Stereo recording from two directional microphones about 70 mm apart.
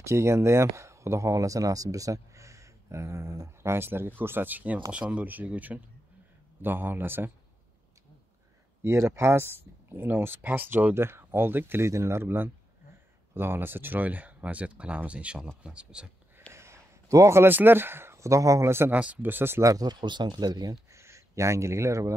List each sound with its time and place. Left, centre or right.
0.0 s speech: right
8.8 s speech: right
11.0 s speech: right
11.9 s speech: right; by 16.1 s centre
16.5 s a sound: right
17.4 s speech: right
18.9 s speech: right
19.6 s speech: right
20.9 s speech: right